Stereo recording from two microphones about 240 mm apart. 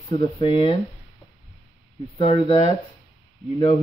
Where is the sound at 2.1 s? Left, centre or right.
Left.